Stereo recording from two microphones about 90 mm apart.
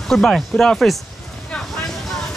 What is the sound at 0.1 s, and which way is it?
Speech, 5° left (ahead or behind).